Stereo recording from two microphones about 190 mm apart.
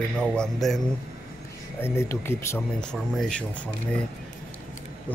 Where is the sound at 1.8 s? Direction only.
15° left (ahead or behind).